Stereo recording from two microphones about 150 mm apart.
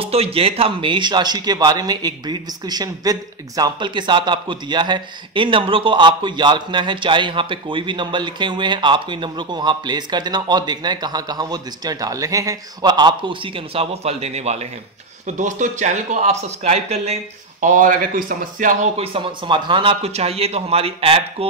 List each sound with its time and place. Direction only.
0.0 s speech: 40° right (ahead or behind); by 18.9 s 60° right (ahead or behind)
18.9 s speech: 35° right (ahead or behind)